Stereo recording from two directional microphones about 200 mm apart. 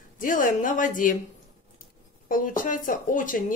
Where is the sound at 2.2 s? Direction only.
45° left (ahead or behind).